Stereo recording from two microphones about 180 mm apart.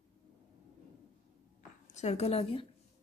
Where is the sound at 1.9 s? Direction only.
35° left (ahead or behind).